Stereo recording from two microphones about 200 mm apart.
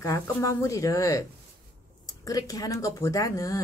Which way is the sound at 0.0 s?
15° left (ahead or behind).